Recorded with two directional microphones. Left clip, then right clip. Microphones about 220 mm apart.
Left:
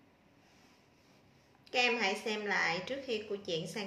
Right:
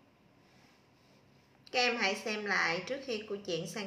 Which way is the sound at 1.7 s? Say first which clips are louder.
Even; 5° right (ahead or behind).